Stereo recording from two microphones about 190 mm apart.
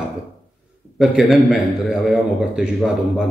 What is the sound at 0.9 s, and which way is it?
A man's voice, centre (ahead or behind).